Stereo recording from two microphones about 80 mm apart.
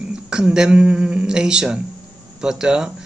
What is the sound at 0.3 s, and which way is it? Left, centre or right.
Speech, centre.